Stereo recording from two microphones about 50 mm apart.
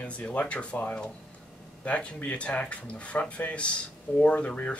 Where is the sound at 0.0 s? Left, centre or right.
Left.